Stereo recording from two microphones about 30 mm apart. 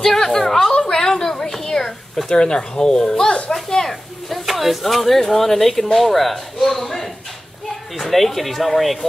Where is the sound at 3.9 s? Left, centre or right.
Centre.